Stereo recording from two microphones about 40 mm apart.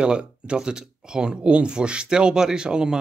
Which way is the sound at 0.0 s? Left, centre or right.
Right.